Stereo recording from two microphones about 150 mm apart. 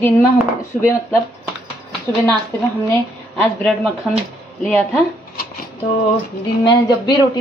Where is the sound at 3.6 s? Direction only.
Centre (ahead or behind).